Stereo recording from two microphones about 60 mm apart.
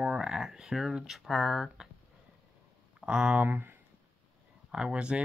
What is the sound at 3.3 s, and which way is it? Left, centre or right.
Speech, right.